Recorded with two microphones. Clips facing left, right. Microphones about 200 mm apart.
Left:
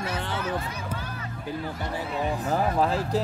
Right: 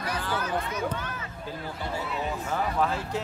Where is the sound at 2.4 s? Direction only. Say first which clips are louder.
Left 3 dB; 35° left (ahead or behind).